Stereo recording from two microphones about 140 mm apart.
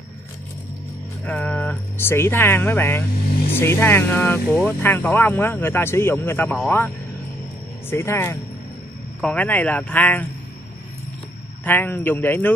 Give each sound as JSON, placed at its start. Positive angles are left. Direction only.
{"t": 1.2, "sound": "speech", "side_deg": 10}
{"t": 7.9, "sound": "speech", "side_deg": 15}
{"t": 11.6, "sound": "speech", "side_deg": 15}